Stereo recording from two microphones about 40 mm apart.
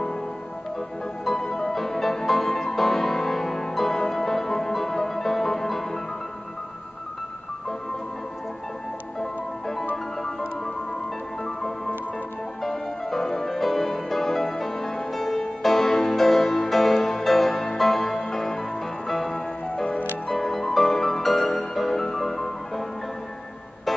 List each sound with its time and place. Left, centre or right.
1.2 s music: centre
9.2 s music: centre
12.6 s music: centre
19.3 s music: left
20.3 s music: centre